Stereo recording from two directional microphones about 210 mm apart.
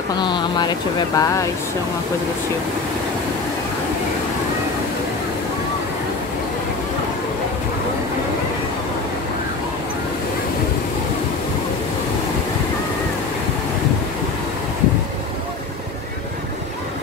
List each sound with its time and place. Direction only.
0.2 s speech: 20° left (ahead or behind)